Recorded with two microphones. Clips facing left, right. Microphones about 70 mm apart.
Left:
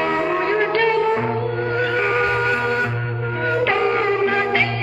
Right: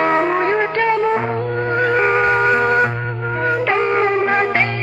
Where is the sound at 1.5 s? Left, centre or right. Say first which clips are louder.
Right 3 dB; right.